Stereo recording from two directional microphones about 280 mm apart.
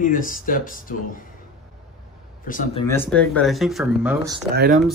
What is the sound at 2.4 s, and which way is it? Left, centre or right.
Speech, left.